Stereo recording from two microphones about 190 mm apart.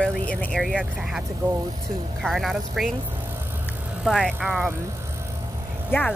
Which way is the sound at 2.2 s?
Centre (ahead or behind).